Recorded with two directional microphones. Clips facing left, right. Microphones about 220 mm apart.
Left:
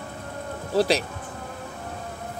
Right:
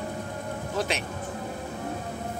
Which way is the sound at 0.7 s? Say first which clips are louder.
Left 9 dB; 35° left (ahead or behind).